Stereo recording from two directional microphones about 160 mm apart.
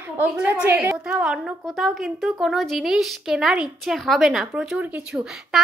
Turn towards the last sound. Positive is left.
turn(degrees=-5)  # may be behind; listen again after turning